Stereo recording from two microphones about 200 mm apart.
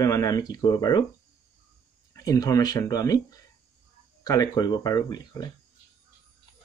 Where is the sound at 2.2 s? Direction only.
15° left (ahead or behind).